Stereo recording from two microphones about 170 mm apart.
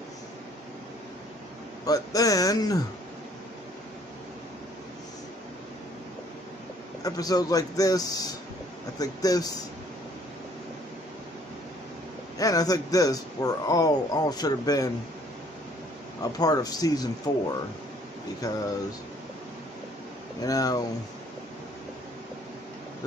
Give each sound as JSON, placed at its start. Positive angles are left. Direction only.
{"t": 1.9, "sound": "speech", "side_deg": 20}
{"t": 7.0, "sound": "speech", "side_deg": 20}
{"t": 12.4, "sound": "speech", "side_deg": 20}
{"t": 16.2, "sound": "speech", "side_deg": 20}
{"t": 18.4, "sound": "speech", "side_deg": 20}
{"t": 20.4, "sound": "speech", "side_deg": 20}